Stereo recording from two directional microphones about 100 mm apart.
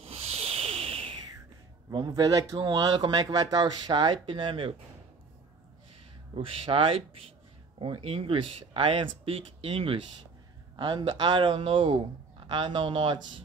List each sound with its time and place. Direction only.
0.0 s a sound: 85° right; by 1.1 s 65° right (ahead or behind)
1.9 s speech: 45° right (ahead or behind)
6.3 s speech: 65° right (ahead or behind)
10.8 s speech: 50° right (ahead or behind)